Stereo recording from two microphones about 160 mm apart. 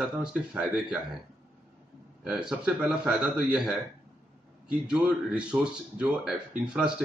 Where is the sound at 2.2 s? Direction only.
5° right (ahead or behind).